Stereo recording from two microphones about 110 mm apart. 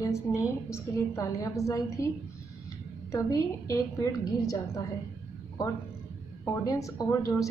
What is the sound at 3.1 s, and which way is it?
A woman's voice, 30° left (ahead or behind).